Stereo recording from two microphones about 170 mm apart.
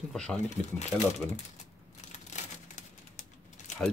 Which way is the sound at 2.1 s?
45° left (ahead or behind).